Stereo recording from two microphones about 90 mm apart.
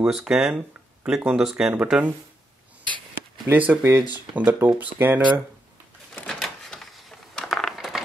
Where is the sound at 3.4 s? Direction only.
20° right (ahead or behind).